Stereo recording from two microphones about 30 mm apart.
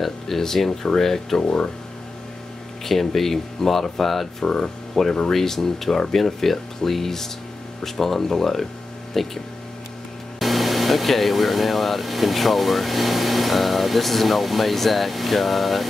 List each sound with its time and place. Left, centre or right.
0.4 s speech: centre
2.8 s speech: centre
10.4 s speech: centre